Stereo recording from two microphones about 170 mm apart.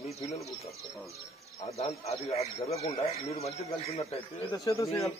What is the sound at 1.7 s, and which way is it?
A man's voice, 40° left (ahead or behind).